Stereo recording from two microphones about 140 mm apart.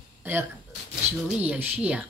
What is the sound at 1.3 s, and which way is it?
Speech, 10° right (ahead or behind).